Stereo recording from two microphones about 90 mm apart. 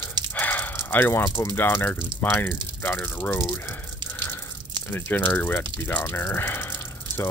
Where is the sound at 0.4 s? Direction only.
20° left (ahead or behind).